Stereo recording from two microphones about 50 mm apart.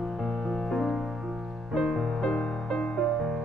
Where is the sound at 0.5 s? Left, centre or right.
Centre.